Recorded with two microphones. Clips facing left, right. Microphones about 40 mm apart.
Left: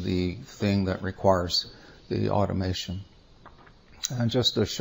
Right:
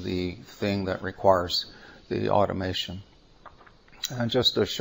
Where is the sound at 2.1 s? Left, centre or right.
Right.